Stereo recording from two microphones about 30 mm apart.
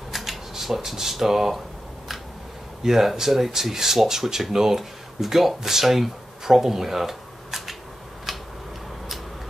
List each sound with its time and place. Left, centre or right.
0.1 s speech: centre
2.8 s speech: centre
8.3 s tick-tock: centre